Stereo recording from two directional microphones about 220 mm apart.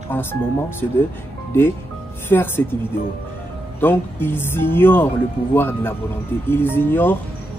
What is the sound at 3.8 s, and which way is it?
Speech, 10° left (ahead or behind).